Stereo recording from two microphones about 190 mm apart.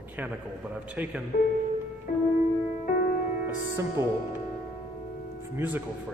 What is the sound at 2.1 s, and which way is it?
Music, 45° left (ahead or behind).